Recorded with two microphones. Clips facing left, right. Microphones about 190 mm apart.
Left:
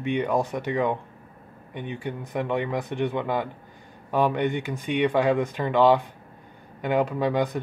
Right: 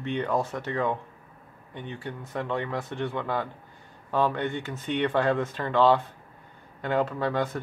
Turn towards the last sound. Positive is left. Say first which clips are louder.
# left 3 dB
turn(degrees=15)  # may be behind; listen again after turning